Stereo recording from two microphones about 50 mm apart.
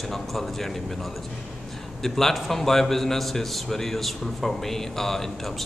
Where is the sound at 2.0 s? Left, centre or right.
Centre.